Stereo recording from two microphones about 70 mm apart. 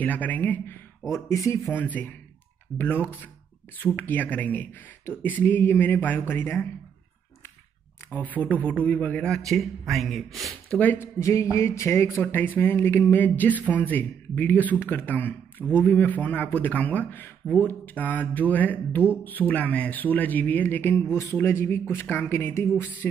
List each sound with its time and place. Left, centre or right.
0.0 s speech: left
1.1 s speech: left
1.7 s speech: left
8.1 s speech: left; by 10.5 s centre
11.0 s speech: left